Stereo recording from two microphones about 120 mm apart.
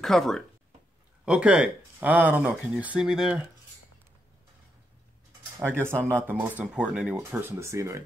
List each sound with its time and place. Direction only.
0.0 s speech: 5° left (ahead or behind)
1.2 s speech: 10° right (ahead or behind)
5.6 s speech: 15° right (ahead or behind)
7.3 s speech: 20° right (ahead or behind)